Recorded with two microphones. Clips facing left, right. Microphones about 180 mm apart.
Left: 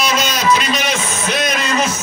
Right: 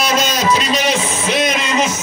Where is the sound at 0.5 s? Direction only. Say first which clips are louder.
Right 2 dB; 30° right (ahead or behind).